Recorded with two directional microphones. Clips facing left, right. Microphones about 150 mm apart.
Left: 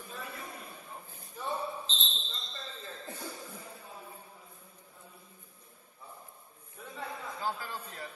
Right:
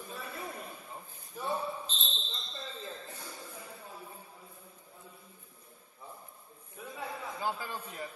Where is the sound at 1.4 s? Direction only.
10° right (ahead or behind).